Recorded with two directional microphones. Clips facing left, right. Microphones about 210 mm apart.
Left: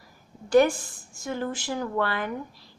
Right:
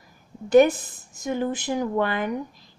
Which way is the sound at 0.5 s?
20° right (ahead or behind).